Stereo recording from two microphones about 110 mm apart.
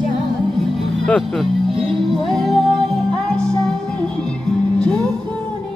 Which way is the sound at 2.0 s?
Centre (ahead or behind).